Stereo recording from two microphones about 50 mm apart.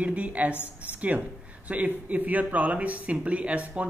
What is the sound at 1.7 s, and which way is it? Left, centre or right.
Speech, right.